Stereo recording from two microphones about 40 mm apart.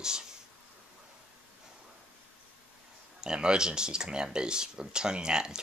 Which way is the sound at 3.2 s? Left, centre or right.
Right.